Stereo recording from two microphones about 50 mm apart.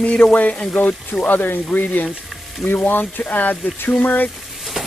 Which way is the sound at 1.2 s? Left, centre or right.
Left.